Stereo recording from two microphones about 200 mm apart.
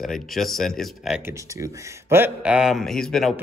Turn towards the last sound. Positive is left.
turn(degrees=0)  # may be behind; listen again after turning